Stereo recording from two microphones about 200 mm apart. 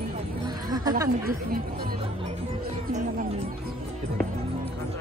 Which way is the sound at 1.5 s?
45° right (ahead or behind).